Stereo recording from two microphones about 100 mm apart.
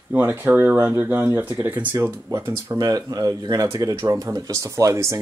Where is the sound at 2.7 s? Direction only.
40° right (ahead or behind).